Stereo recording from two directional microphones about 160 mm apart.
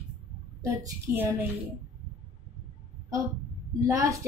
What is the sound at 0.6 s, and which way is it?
Speech, 15° right (ahead or behind).